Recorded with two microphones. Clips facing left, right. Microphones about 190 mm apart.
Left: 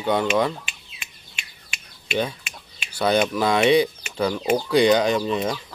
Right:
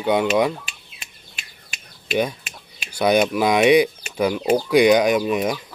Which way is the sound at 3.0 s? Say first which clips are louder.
Right 3 dB; 10° right (ahead or behind).